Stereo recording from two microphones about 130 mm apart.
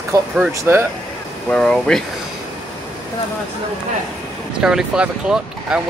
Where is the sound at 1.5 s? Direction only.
10° left (ahead or behind).